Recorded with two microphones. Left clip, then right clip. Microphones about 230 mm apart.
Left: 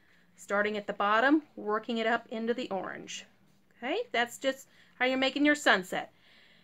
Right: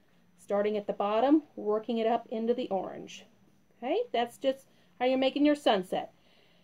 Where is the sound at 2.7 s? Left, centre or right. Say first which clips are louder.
Right 2 dB; left.